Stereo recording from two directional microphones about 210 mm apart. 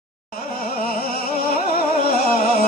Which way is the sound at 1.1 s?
45° left (ahead or behind).